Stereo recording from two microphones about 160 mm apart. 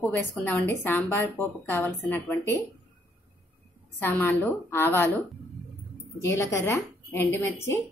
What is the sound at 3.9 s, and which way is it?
A woman's voice, 10° left (ahead or behind).